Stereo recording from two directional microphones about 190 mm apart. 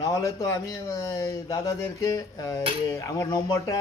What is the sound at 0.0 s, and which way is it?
Speech, 15° left (ahead or behind).